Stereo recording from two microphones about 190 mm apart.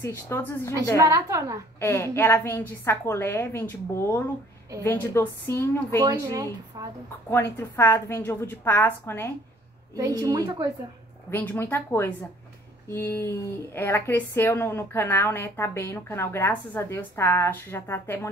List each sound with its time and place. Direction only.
0.0 s a woman's voice: 10° left (ahead or behind)
0.9 s a woman's voice: 15° right (ahead or behind)
1.8 s a woman's voice: 15° left (ahead or behind)
6.0 s a woman's voice: 15° right (ahead or behind)
7.5 s a woman's voice: 10° left (ahead or behind)
9.9 s a woman's voice: 15° right (ahead or behind)
11.2 s a woman's voice: 10° left (ahead or behind)